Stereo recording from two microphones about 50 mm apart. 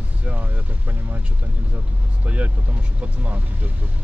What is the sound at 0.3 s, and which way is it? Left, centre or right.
Vehicle, right.